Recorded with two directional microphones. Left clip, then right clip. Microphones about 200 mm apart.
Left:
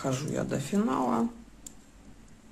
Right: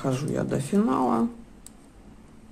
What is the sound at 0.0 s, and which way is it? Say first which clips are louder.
Speech: right 4 dB; 10° right (ahead or behind).